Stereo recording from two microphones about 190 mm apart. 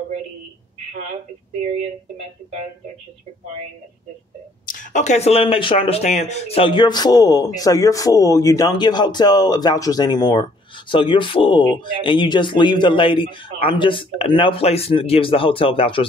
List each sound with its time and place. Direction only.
4.6 s speech: 40° left (ahead or behind)